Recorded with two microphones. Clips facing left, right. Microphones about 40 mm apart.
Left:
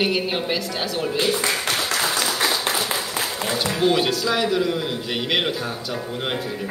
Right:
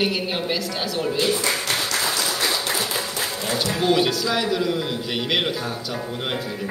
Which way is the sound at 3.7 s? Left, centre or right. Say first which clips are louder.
Even; centre.